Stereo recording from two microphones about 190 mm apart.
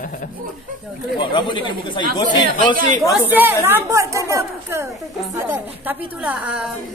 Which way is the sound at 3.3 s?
10° right (ahead or behind).